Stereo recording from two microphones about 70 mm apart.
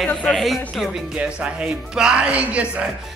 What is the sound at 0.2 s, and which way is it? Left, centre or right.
Speech, centre.